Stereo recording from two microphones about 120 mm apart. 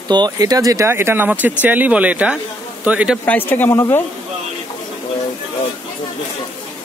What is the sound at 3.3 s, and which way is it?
Speech, 15° left (ahead or behind).